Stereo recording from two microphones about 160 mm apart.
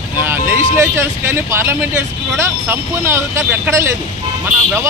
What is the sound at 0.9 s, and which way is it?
Speech, 15° right (ahead or behind).